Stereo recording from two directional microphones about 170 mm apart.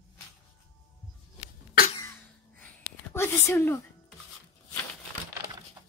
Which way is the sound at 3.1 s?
15° left (ahead or behind).